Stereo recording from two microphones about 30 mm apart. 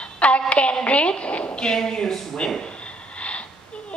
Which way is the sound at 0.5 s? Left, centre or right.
Left.